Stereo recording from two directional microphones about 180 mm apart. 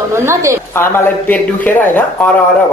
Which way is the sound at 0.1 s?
15° right (ahead or behind).